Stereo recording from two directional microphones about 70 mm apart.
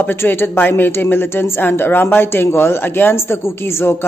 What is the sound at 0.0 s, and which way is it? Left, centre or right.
Speech, left.